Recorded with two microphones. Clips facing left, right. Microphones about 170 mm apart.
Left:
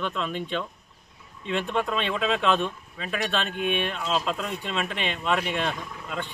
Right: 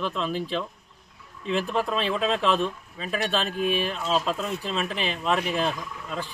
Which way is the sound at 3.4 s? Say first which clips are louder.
Right 2 dB; 35° right (ahead or behind).